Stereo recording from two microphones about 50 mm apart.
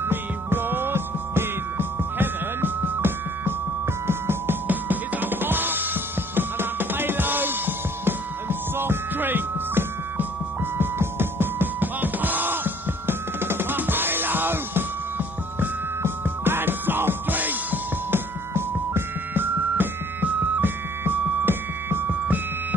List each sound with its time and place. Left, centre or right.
0.0 s music: right
4.6 s music: right
18.5 s music: right